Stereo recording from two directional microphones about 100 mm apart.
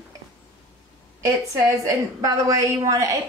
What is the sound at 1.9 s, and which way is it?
A woman's voice, 35° right (ahead or behind).